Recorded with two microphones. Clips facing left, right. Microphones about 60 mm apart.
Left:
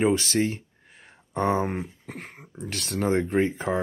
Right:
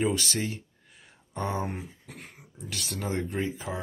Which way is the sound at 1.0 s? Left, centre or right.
Left.